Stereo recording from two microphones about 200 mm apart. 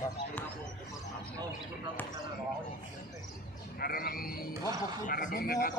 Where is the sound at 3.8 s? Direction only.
50° left (ahead or behind).